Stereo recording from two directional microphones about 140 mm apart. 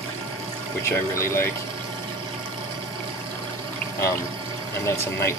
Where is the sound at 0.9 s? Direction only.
20° left (ahead or behind).